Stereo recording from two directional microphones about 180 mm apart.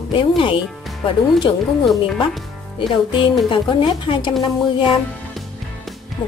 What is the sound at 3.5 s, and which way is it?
Speech, 30° left (ahead or behind).